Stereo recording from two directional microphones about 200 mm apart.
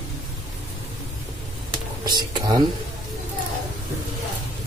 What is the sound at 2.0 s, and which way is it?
Speech, 20° right (ahead or behind).